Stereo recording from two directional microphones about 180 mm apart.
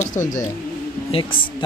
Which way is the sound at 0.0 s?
45° left (ahead or behind).